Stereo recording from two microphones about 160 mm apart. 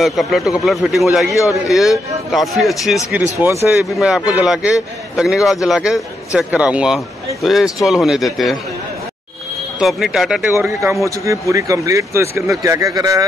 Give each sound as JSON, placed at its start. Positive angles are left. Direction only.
{"t": 0.0, "sound": "a man's voice", "side_deg": 0}
{"t": 3.3, "sound": "a man's voice", "side_deg": -15}
{"t": 9.8, "sound": "a man's voice", "side_deg": 0}
{"t": 10.5, "sound": "speech", "side_deg": -15}